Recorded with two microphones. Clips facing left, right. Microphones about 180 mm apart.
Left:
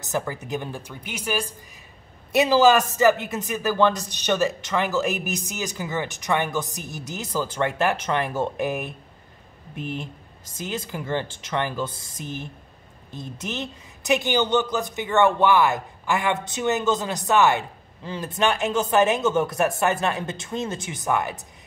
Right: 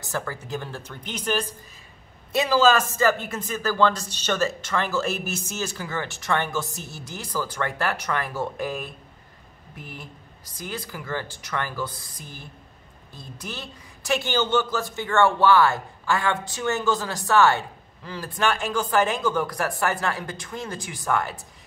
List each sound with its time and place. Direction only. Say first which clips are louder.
0.0 s a man's voice: left 3 dB; 20° left (ahead or behind)